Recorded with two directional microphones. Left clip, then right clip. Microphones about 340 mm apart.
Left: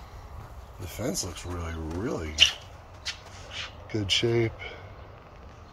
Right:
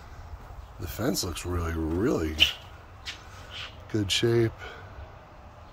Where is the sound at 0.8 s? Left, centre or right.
Centre.